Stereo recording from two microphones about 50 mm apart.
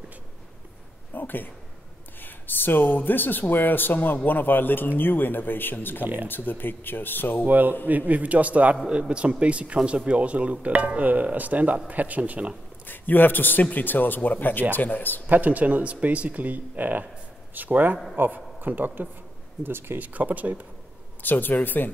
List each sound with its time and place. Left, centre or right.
1.1 s speech: left
7.4 s speech: right
8.8 s speech: centre
12.8 s speech: left
15.2 s speech: right
20.0 s speech: right
21.2 s speech: left